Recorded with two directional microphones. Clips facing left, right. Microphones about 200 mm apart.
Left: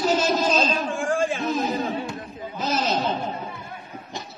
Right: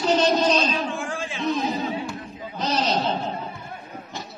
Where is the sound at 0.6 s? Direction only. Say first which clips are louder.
Left 2 dB; 50° left (ahead or behind).